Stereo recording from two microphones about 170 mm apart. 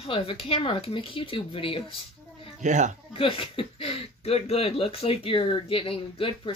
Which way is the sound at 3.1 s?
30° left (ahead or behind).